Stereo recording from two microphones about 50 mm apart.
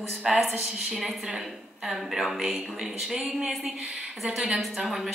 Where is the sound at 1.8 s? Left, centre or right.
Centre.